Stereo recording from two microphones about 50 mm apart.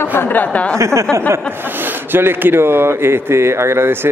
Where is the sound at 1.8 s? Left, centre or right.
Right.